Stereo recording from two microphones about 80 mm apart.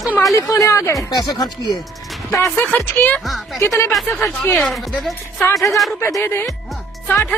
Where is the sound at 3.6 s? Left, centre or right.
Left.